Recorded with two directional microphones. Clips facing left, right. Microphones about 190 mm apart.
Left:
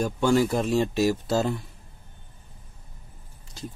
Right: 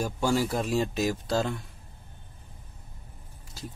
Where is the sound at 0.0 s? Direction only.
5° right (ahead or behind).